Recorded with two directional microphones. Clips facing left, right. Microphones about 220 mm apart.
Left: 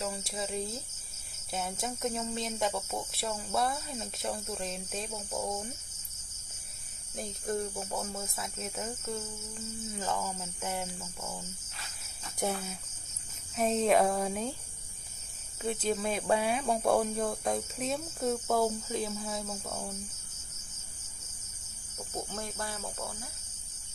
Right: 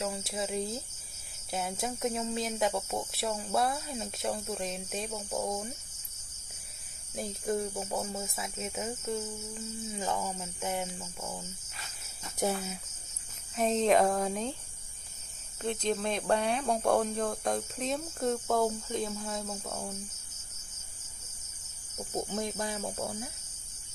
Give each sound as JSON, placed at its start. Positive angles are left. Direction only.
{"t": 0.1, "sound": "speech", "side_deg": 0}
{"t": 5.3, "sound": "cricket", "side_deg": -20}
{"t": 7.2, "sound": "speech", "side_deg": 0}
{"t": 12.4, "sound": "speech", "side_deg": -5}
{"t": 15.6, "sound": "speech", "side_deg": 5}
{"t": 21.9, "sound": "cricket", "side_deg": -15}